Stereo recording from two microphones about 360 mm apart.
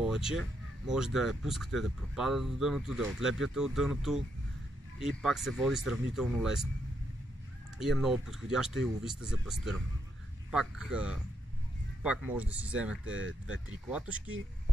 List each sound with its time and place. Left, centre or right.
0.0 s speech: centre
7.8 s speech: centre
12.9 s speech: right
13.7 s speech: centre